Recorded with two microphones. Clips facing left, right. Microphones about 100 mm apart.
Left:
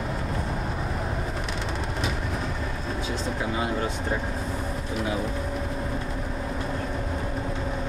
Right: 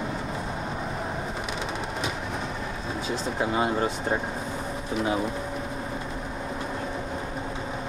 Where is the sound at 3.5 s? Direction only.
30° right (ahead or behind).